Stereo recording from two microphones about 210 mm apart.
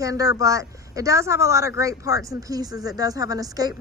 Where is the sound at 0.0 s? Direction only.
15° right (ahead or behind).